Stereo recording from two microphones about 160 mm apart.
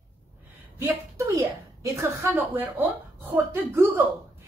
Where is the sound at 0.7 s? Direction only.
20° right (ahead or behind).